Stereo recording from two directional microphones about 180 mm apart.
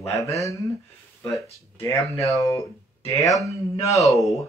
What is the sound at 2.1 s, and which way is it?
Speech, 15° left (ahead or behind).